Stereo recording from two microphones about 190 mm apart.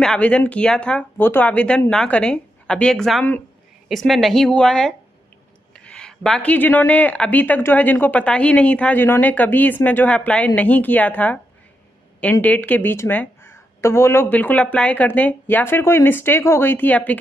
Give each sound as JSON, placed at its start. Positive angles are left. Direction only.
{"t": 0.0, "sound": "speech", "side_deg": 5}